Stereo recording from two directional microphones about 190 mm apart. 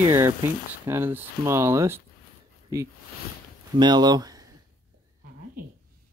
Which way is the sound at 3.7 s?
25° right (ahead or behind).